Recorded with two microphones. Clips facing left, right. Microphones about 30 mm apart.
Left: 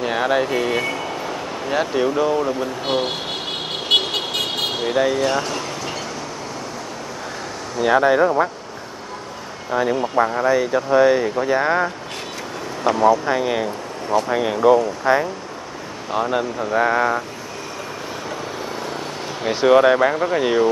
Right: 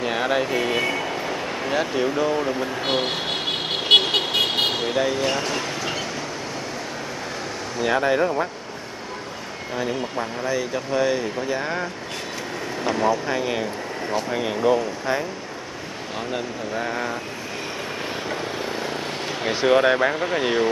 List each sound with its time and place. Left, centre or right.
0.0 s a sound: centre
2.0 s speech: centre
3.9 s vehicle: centre
4.8 s speech: centre
7.8 s speech: centre
9.7 s speech: centre
10.1 s speech: left
10.5 s speech: centre
12.8 s speech: centre; by 17.2 s left
18.3 s vehicle: centre
20.2 s speech: centre